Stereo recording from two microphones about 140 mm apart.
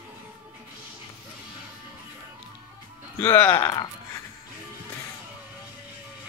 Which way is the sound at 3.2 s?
15° left (ahead or behind).